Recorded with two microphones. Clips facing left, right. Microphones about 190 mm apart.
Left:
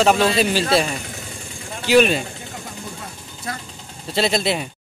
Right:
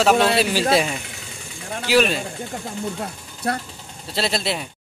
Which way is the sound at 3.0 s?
65° right (ahead or behind).